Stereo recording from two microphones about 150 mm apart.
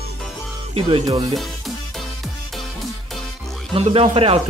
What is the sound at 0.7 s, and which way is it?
Speech, 35° right (ahead or behind).